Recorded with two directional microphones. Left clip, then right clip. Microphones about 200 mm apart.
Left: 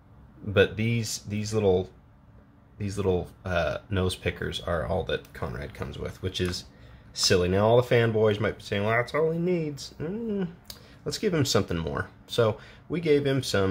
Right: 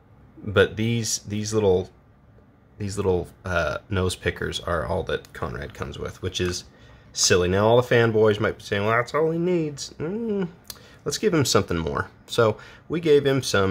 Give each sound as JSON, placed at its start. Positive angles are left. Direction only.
{"t": 0.5, "sound": "speech", "side_deg": -15}